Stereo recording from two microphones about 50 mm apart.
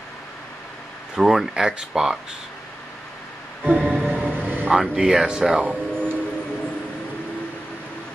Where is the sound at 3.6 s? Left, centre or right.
Right.